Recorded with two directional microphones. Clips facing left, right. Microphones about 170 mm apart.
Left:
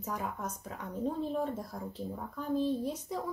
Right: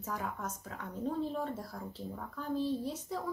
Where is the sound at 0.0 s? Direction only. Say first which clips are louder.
Left 2 dB; 15° left (ahead or behind).